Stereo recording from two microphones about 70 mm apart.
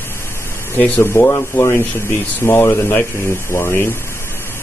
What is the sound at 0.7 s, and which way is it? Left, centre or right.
Speech, left.